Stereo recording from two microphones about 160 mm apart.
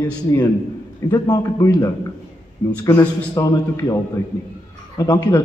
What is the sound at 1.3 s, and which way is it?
A man's voice, 25° left (ahead or behind).